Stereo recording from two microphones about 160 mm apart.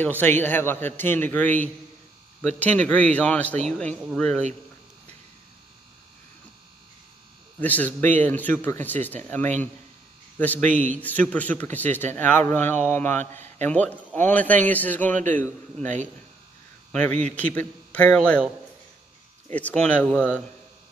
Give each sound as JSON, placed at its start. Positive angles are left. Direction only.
{"t": 0.0, "sound": "speech", "side_deg": 10}
{"t": 2.9, "sound": "speech", "side_deg": 10}
{"t": 7.6, "sound": "speech", "side_deg": 10}
{"t": 10.6, "sound": "speech", "side_deg": -50}
{"t": 11.0, "sound": "speech", "side_deg": 10}
{"t": 15.1, "sound": "speech", "side_deg": -50}
{"t": 16.9, "sound": "speech", "side_deg": 10}
{"t": 19.5, "sound": "speech", "side_deg": 10}